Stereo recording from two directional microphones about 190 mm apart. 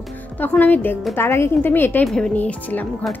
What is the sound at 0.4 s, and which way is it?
A woman's voice, 10° left (ahead or behind).